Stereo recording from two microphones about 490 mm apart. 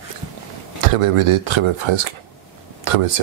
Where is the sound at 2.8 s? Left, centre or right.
Right.